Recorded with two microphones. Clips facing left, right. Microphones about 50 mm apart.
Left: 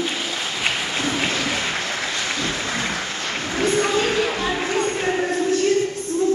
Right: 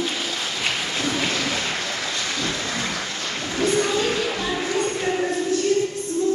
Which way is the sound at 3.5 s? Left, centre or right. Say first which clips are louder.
Left 1 dB; left.